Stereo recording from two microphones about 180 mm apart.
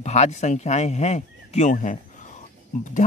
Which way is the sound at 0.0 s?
40° left (ahead or behind).